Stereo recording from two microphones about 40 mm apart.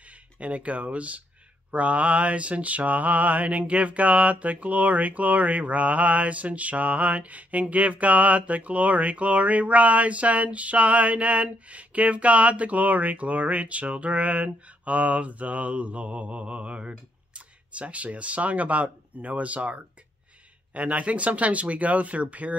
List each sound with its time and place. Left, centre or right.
0.4 s mantra: right